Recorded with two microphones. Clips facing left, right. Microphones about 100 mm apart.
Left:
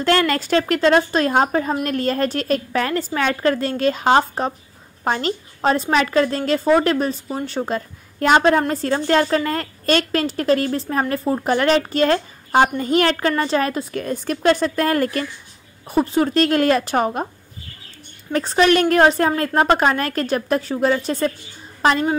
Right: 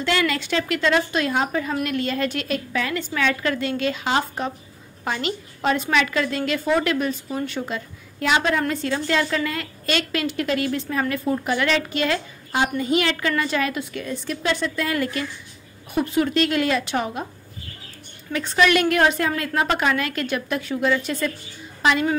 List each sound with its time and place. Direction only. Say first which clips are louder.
0.0 s a woman's voice: left 5 dB; 45° left (ahead or behind)
15.9 s a woman's voice: left 3 dB; 35° left (ahead or behind)
18.3 s a woman's voice: left 3 dB; 35° left (ahead or behind)